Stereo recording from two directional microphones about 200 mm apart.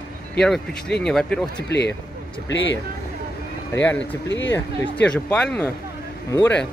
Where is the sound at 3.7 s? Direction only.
10° left (ahead or behind).